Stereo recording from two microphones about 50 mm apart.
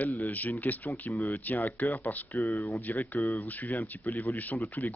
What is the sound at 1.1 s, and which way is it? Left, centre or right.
Speech, left.